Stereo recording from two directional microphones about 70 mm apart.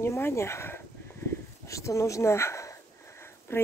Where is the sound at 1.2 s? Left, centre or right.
Left.